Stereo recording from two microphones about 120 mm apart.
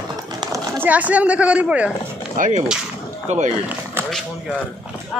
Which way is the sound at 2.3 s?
90° right.